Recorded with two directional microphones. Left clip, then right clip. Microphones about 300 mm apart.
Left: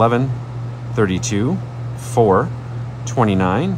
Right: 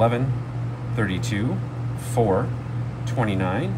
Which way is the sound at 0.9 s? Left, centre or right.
Left.